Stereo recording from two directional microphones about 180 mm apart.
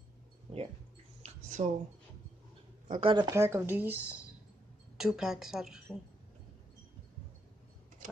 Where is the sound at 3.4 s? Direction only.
15° right (ahead or behind).